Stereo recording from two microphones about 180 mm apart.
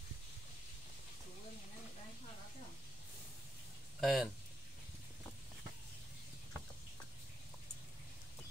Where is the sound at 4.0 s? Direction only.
Centre (ahead or behind).